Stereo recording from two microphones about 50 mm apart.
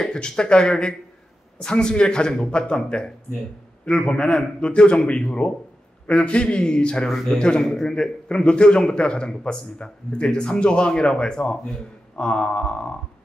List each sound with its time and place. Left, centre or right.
0.0 s a man's voice: centre